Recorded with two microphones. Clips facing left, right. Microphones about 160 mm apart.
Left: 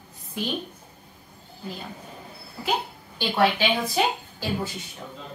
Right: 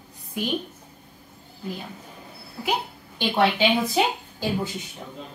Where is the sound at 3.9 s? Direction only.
20° right (ahead or behind).